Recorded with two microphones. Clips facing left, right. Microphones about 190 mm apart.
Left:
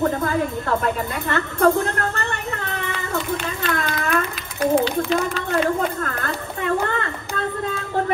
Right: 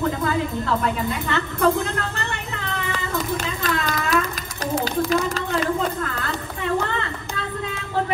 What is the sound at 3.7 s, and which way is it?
Speech, 55° left (ahead or behind).